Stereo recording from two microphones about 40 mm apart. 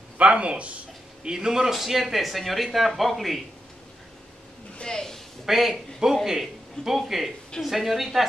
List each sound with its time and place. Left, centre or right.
0.3 s speech: right
1.2 s speech: centre
4.8 s a sound: centre
5.4 s speech: centre